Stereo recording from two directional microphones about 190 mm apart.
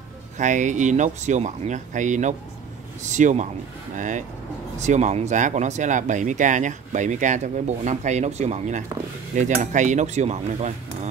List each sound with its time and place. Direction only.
0.4 s speech: 40° right (ahead or behind)